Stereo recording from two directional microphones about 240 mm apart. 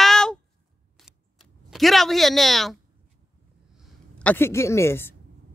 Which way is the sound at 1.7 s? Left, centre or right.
Centre.